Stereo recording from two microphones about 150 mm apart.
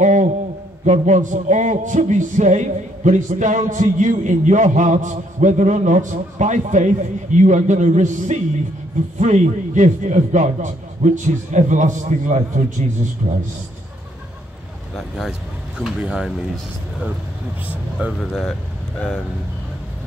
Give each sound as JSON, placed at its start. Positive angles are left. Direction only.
{"t": 0.0, "sound": "a sound", "side_deg": -55}
{"t": 0.8, "sound": "a man's voice", "side_deg": -50}
{"t": 15.0, "sound": "speech", "side_deg": 0}
{"t": 17.6, "sound": "speech", "side_deg": -10}
{"t": 18.2, "sound": "speech", "side_deg": 5}